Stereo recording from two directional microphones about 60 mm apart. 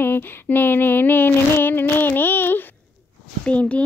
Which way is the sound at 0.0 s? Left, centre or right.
Left.